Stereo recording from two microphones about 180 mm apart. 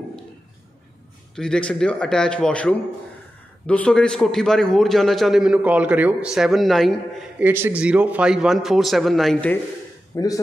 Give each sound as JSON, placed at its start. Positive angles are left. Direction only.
{"t": 1.3, "sound": "a man's voice", "side_deg": 5}
{"t": 7.3, "sound": "a man's voice", "side_deg": -10}
{"t": 10.1, "sound": "a man's voice", "side_deg": 20}